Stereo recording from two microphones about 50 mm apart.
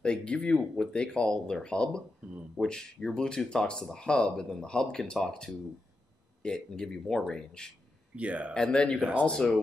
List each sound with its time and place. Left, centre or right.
0.0 s speech: left
8.2 s speech: right
8.5 s speech: centre